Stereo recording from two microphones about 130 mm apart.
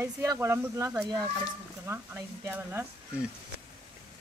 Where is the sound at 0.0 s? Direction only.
25° right (ahead or behind).